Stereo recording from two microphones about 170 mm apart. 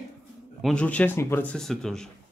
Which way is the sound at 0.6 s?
5° left (ahead or behind).